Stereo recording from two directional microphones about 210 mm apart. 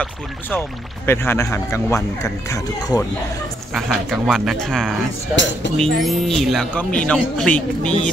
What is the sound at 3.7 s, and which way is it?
Speech, centre (ahead or behind).